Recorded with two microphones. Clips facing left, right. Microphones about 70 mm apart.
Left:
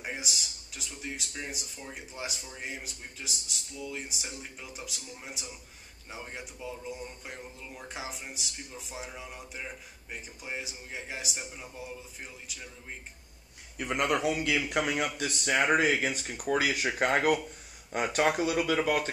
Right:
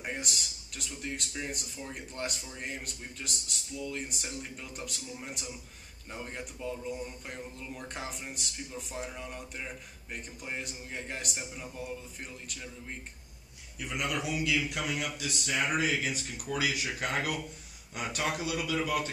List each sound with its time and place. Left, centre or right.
0.0 s speech: centre
13.7 s a man's voice: left